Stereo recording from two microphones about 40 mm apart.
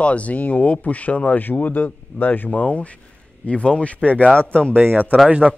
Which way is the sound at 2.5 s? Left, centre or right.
Left.